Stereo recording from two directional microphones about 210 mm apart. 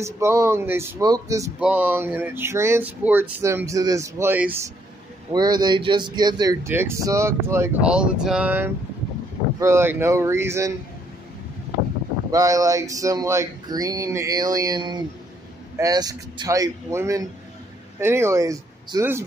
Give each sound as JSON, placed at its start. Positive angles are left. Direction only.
{"t": 0.0, "sound": "speech", "side_deg": -15}
{"t": 5.3, "sound": "speech", "side_deg": -20}
{"t": 12.3, "sound": "speech", "side_deg": -15}